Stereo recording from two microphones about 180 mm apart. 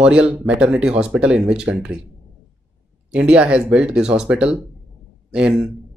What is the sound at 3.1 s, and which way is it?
A man's voice, 5° right (ahead or behind).